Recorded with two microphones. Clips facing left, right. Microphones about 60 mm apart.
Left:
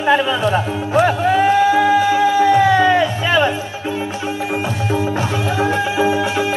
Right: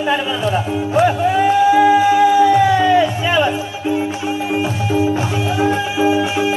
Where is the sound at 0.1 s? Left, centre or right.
Left.